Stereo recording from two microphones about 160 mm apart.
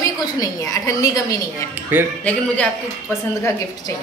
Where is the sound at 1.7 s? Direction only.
10° right (ahead or behind).